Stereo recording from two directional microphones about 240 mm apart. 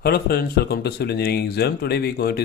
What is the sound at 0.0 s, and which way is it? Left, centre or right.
Speech, left.